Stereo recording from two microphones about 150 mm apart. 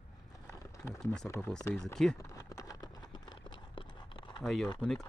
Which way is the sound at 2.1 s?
20° left (ahead or behind).